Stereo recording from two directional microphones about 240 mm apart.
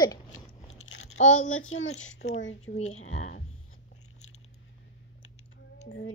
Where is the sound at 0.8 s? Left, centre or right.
Left.